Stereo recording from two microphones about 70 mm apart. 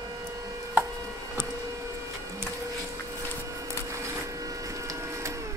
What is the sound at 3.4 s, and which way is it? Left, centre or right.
Printer, right.